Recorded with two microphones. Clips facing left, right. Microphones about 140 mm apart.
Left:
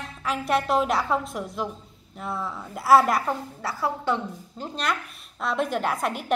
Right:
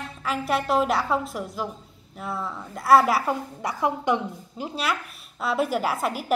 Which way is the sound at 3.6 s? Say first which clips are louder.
Right 2 dB; 15° right (ahead or behind).